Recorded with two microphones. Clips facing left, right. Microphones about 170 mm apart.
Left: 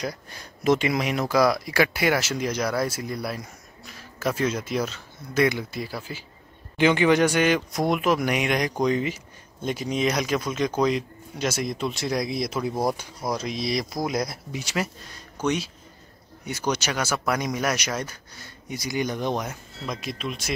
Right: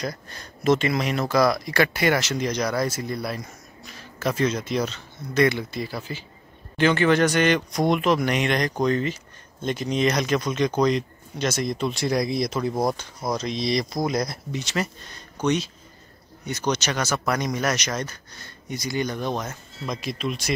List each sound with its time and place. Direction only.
0.0 s speech: 10° left (ahead or behind)
19.9 s speech: centre (ahead or behind)